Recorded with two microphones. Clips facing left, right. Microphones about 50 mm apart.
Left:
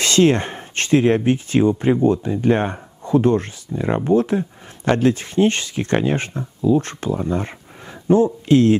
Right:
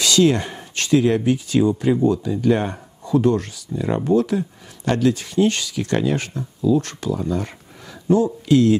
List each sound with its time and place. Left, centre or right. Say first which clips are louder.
0.0 s speech: left 1 dB; left